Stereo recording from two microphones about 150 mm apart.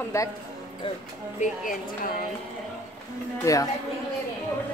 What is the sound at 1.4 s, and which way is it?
Speech, 65° left (ahead or behind).